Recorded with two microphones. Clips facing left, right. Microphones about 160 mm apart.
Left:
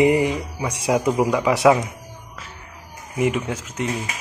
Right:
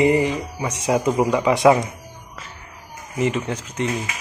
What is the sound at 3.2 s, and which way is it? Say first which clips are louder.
Mantra: even; 10° left (ahead or behind).